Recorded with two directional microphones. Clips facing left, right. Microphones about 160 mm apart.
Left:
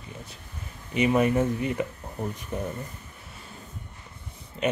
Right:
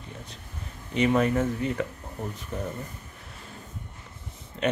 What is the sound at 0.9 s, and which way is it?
Speech, 10° left (ahead or behind).